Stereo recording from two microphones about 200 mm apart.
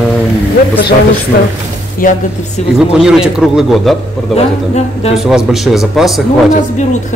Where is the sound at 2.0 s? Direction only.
45° left (ahead or behind).